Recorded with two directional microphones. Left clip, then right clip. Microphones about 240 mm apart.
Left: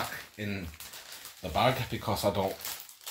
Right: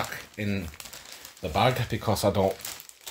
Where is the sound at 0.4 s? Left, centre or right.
Right.